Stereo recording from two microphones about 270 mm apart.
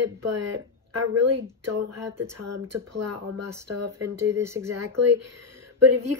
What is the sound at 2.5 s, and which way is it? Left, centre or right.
Speech, right.